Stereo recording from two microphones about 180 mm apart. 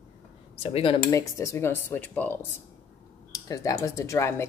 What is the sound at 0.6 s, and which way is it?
Speech, 30° left (ahead or behind).